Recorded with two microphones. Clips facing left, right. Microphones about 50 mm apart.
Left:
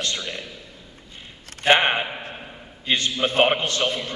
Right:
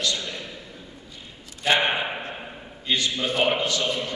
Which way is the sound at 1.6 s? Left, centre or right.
Left.